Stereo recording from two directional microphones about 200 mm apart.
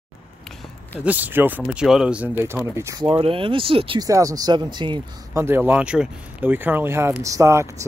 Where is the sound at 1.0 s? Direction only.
10° right (ahead or behind); by 5.4 s 25° right (ahead or behind).